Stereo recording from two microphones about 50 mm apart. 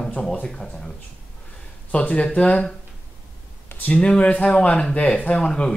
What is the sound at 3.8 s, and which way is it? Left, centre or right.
Speech, left.